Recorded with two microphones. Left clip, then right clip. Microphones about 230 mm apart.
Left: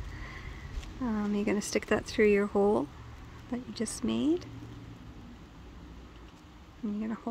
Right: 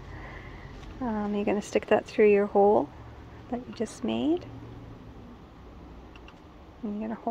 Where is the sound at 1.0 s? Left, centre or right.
Left.